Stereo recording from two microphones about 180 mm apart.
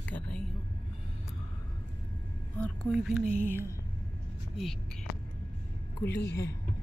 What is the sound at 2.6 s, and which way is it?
Speech, centre (ahead or behind).